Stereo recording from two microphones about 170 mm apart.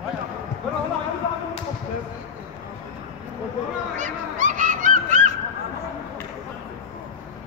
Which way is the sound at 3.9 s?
45° right (ahead or behind).